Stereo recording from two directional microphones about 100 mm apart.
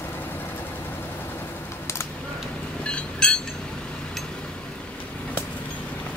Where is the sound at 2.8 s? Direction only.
10° left (ahead or behind).